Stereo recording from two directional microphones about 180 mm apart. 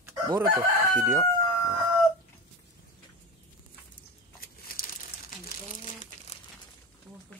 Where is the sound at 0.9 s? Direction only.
15° right (ahead or behind).